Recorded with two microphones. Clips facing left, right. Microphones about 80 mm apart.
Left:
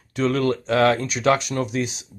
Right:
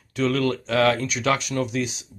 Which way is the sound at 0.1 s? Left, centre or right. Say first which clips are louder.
Left 2 dB; left.